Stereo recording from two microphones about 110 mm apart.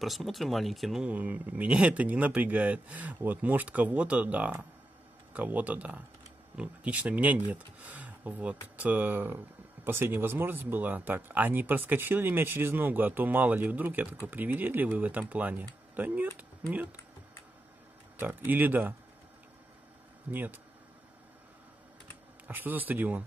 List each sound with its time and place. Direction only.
0.0 s speech: centre (ahead or behind)
1.1 s speech: 15° right (ahead or behind)
18.1 s speech: 20° right (ahead or behind)
20.2 s speech: 15° right (ahead or behind)
22.5 s speech: 15° right (ahead or behind)